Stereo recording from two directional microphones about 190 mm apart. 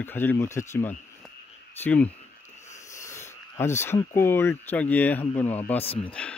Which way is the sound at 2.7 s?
15° left (ahead or behind).